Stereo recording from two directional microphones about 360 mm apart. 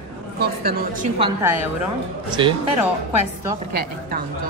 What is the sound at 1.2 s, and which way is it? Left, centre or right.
Speech, centre.